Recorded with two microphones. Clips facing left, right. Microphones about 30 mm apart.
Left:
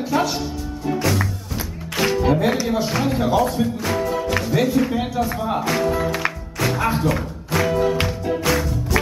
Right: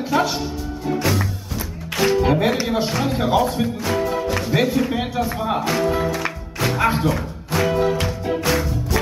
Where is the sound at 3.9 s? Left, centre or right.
Centre.